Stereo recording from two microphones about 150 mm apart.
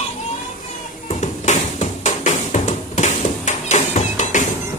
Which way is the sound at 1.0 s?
55° left (ahead or behind).